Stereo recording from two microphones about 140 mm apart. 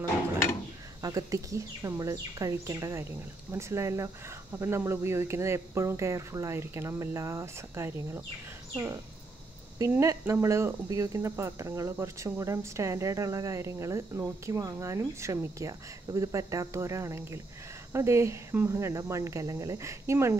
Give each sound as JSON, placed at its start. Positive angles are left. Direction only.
{"t": 1.0, "sound": "speech", "side_deg": -25}